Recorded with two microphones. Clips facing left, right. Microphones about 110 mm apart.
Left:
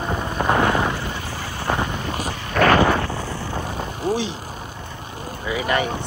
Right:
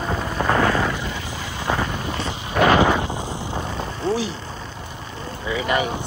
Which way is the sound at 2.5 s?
15° right (ahead or behind).